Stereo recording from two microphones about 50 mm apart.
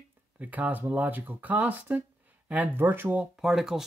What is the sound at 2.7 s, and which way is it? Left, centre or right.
Speech, right.